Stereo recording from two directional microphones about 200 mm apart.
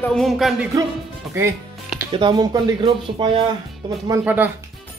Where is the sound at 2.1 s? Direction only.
25° right (ahead or behind).